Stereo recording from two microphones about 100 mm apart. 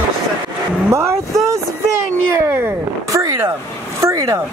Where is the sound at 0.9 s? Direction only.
30° right (ahead or behind).